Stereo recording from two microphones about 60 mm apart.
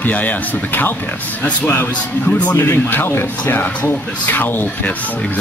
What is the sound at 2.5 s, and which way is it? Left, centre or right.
Speech, left.